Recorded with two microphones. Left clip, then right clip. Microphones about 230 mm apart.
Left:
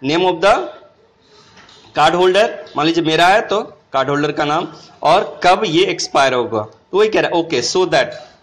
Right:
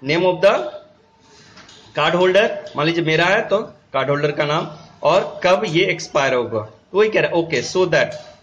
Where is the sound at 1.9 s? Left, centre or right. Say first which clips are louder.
Left 3 dB; centre.